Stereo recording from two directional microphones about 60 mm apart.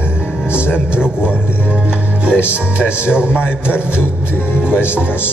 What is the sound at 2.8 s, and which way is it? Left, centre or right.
Speech, left.